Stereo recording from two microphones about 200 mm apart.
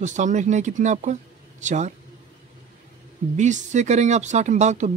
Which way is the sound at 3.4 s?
35° right (ahead or behind).